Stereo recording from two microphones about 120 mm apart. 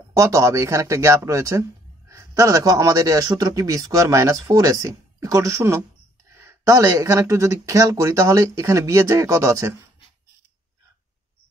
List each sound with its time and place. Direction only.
0.1 s speech: 25° right (ahead or behind)